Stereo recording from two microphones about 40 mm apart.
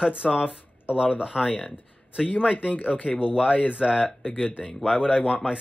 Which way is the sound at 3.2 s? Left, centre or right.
Right.